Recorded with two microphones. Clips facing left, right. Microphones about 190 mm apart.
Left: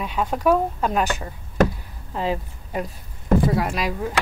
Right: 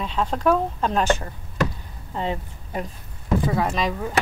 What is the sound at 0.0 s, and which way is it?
Speech, 10° left (ahead or behind).